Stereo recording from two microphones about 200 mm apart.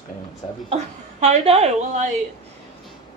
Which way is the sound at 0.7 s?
35° right (ahead or behind).